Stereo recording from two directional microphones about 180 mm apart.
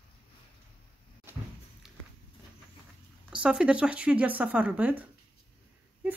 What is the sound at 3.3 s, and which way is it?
Speech, 5° right (ahead or behind).